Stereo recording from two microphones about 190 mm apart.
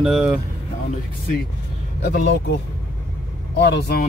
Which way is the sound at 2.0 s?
65° left (ahead or behind).